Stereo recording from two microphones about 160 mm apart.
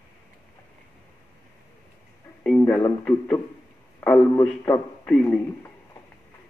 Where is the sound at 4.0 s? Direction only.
10° left (ahead or behind).